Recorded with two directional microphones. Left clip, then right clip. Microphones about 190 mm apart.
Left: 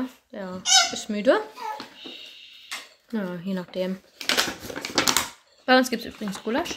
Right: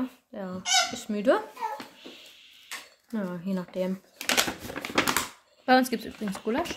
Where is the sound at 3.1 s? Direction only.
5° left (ahead or behind).